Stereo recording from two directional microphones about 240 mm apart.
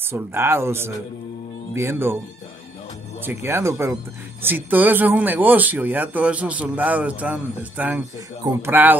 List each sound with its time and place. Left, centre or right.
0.1 s speech: centre
3.3 s speech: centre